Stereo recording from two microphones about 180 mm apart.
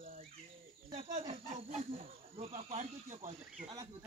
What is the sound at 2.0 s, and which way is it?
Speech, 35° right (ahead or behind).